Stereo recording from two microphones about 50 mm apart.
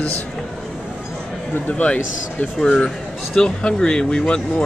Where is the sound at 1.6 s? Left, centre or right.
Left.